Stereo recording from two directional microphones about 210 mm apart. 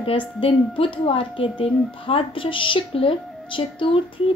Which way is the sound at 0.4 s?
25° left (ahead or behind).